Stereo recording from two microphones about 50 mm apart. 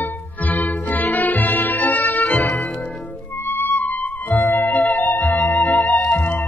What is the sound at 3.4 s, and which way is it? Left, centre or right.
Music, left.